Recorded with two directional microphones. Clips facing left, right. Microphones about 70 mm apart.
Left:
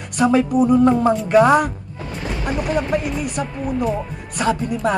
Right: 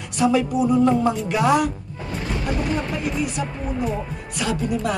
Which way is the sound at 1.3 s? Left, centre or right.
Left.